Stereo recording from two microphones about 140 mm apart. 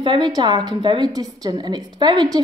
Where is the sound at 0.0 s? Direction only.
35° right (ahead or behind).